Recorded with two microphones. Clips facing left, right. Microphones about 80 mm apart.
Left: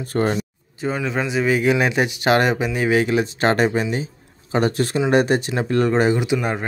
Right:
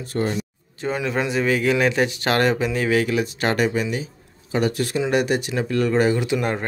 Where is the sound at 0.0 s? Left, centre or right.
Left.